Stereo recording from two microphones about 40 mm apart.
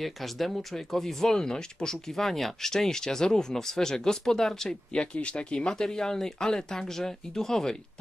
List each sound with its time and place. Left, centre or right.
0.0 s speech: centre
4.9 s speech: left